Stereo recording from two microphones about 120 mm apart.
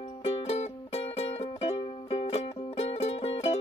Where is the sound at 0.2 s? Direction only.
55° left (ahead or behind).